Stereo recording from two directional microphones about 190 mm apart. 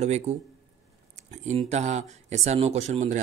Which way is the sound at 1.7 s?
35° right (ahead or behind).